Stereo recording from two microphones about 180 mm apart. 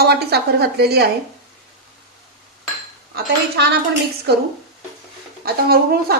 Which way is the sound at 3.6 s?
65° right (ahead or behind).